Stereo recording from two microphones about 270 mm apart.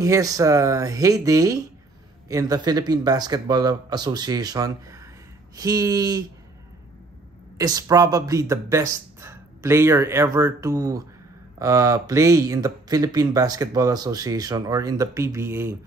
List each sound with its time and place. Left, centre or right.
0.0 s speech: centre
7.5 s speech: centre